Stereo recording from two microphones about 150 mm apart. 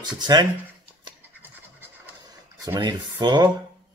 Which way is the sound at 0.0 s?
30° right (ahead or behind).